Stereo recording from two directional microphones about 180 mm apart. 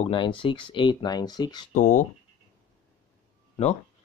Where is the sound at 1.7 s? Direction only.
45° left (ahead or behind).